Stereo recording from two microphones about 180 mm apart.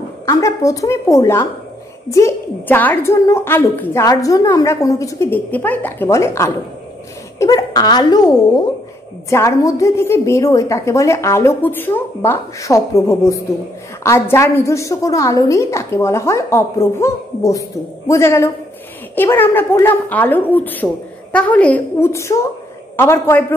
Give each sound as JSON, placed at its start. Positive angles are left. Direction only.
{"t": 0.3, "sound": "a woman's voice", "side_deg": 20}